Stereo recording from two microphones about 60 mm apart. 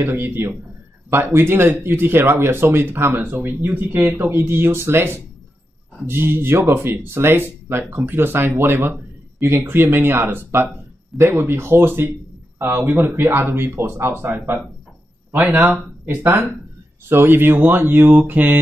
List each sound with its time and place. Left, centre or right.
0.0 s speech: right